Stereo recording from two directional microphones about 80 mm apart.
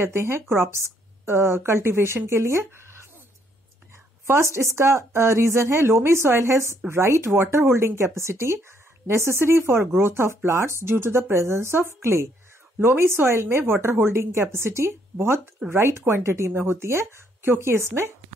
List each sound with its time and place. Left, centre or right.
0.0 s speech: right
4.3 s speech: right